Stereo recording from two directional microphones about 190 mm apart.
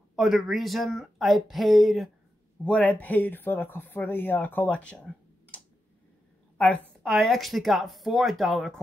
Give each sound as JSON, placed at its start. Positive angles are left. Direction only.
{"t": 0.1, "sound": "speech", "side_deg": 0}
{"t": 7.0, "sound": "speech", "side_deg": 0}